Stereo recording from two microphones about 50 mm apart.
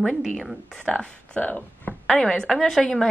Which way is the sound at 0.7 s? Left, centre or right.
Left.